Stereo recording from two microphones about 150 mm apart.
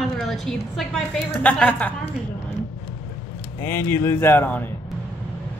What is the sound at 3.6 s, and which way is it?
Speech, 20° left (ahead or behind).